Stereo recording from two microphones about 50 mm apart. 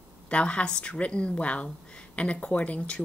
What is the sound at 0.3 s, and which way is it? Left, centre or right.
Speech, left.